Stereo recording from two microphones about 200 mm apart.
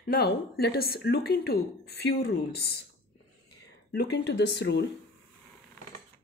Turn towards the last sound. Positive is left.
turn(degrees=60)  # may be behind; listen again after turning